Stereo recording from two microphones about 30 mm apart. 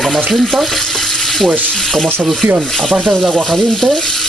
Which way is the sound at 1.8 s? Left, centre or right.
Centre.